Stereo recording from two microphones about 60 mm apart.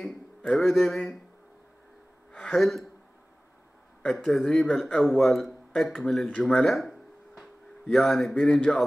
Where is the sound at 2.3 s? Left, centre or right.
Centre.